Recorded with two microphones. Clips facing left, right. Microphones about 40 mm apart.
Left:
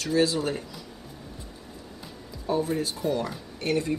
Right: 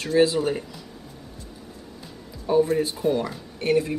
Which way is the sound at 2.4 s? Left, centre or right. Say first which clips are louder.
Right 6 dB; centre.